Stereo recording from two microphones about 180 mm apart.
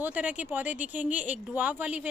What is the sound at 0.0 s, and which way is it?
A woman's voice, 10° right (ahead or behind).